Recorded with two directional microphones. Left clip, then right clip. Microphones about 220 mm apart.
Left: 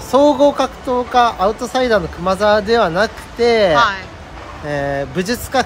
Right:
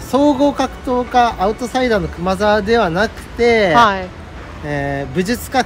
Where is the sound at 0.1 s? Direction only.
10° left (ahead or behind).